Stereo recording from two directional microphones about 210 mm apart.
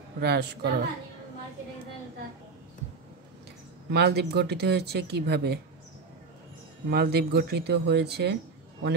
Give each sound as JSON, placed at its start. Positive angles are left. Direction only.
{"t": 0.2, "sound": "speech", "side_deg": -50}
{"t": 3.9, "sound": "speech", "side_deg": -50}
{"t": 6.9, "sound": "speech", "side_deg": -50}